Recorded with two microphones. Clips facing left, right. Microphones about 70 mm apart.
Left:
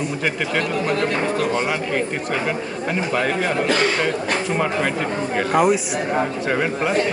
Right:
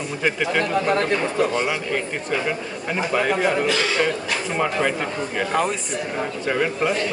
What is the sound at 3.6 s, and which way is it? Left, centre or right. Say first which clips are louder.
Speech: left 1 dB; left.